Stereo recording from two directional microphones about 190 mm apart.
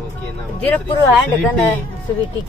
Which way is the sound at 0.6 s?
10° left (ahead or behind).